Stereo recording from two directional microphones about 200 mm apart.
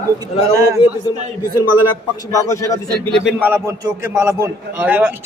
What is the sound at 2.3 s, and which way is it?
Speech, 15° left (ahead or behind).